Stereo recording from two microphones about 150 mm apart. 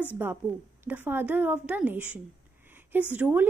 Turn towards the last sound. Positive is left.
turn(degrees=-10)  # may be behind; listen again after turning